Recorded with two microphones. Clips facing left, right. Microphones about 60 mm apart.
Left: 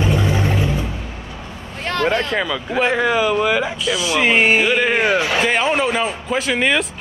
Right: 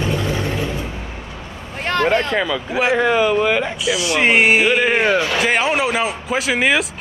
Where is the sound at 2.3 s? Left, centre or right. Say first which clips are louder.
Right 1 dB; centre.